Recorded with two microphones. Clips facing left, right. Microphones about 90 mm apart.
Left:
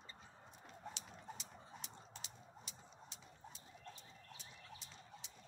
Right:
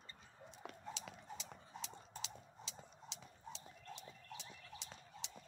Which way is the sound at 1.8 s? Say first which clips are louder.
Right 5 dB; 90° right.